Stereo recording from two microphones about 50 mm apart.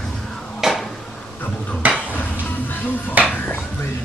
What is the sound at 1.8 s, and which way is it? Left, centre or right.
Stir, right.